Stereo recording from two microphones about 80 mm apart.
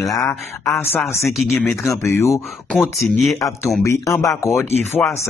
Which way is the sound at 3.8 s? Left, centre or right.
Left.